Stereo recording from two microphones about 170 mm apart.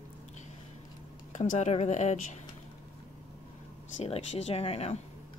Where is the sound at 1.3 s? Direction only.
45° left (ahead or behind).